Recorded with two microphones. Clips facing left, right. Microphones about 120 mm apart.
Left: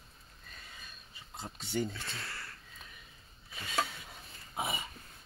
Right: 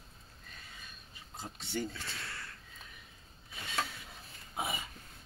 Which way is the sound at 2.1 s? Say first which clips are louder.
Left 1 dB; centre (ahead or behind).